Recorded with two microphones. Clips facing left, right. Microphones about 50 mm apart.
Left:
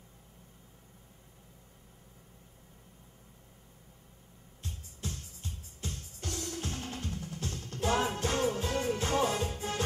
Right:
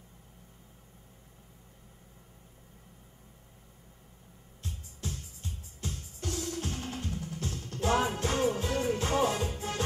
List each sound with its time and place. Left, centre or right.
4.6 s music: centre